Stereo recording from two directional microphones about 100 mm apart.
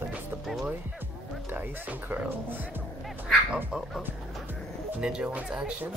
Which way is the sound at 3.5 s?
10° right (ahead or behind).